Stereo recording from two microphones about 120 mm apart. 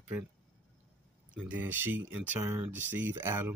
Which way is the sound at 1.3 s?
10° right (ahead or behind).